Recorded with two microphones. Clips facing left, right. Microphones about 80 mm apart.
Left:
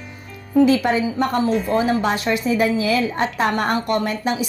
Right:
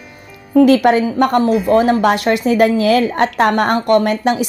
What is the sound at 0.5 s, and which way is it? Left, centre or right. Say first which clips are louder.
A woman's voice: right 6 dB; right.